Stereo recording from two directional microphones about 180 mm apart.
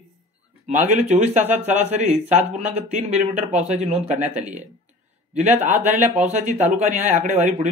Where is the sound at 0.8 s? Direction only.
40° right (ahead or behind).